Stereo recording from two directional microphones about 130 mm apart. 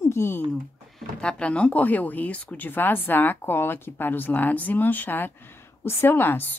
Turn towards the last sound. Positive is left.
turn(degrees=15)  # may be behind; listen again after turning